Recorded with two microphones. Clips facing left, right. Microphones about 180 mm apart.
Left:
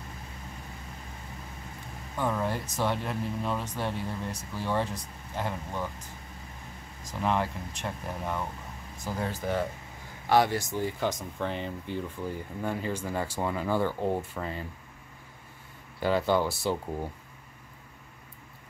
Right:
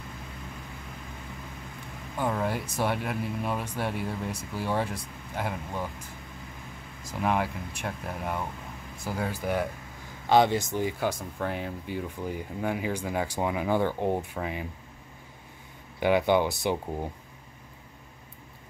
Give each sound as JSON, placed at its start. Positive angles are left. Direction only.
{"t": 2.1, "sound": "speech", "side_deg": -5}
{"t": 7.2, "sound": "speech", "side_deg": -10}
{"t": 16.0, "sound": "speech", "side_deg": -15}